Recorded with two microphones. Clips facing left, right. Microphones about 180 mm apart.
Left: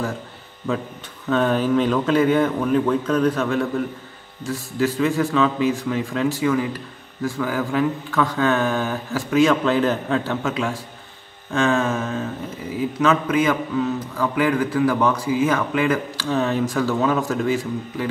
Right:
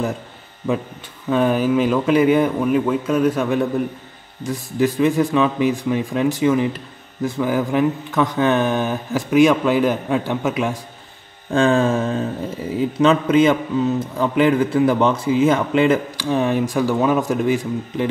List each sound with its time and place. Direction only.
1.3 s speech: 10° right (ahead or behind)
11.5 s mantra: 30° right (ahead or behind)
12.7 s a man's voice: 30° right (ahead or behind)